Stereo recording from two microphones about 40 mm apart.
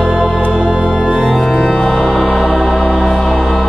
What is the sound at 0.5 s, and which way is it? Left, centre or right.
Music, centre.